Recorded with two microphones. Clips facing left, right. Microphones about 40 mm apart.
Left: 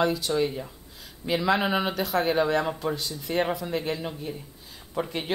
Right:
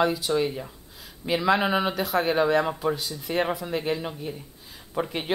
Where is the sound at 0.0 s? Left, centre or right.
Centre.